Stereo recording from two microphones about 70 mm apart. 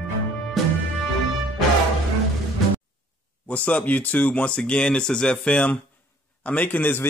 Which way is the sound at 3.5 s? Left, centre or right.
Left.